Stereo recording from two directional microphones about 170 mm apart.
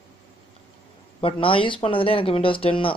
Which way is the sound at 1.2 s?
30° left (ahead or behind).